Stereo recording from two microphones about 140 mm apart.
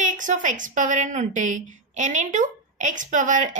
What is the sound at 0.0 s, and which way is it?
A woman's voice, 65° right (ahead or behind).